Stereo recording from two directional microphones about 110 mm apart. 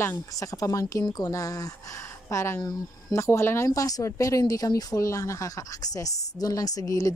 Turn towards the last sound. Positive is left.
turn(degrees=30)  # may be behind; listen again after turning